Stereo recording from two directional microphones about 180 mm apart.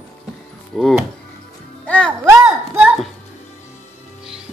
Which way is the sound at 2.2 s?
10° right (ahead or behind).